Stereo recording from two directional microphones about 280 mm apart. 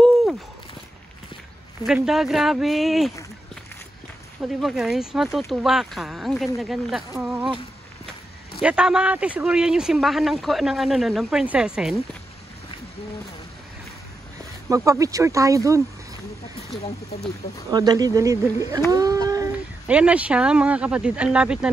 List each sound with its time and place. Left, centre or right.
0.0 s walk: centre
1.8 s a man's voice: centre
4.4 s a man's voice: centre
8.5 s a man's voice: centre
14.7 s speech: centre
17.6 s speech: centre